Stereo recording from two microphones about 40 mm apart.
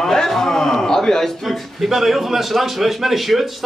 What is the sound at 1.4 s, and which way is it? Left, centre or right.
Speech, centre.